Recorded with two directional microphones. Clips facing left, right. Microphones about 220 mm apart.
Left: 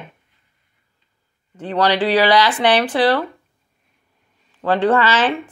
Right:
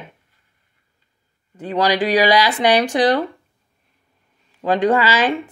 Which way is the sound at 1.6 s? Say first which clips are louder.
Even; 10° right (ahead or behind).